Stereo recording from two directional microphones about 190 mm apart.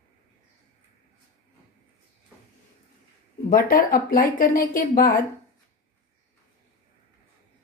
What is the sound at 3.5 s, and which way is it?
A woman's voice, 50° left (ahead or behind).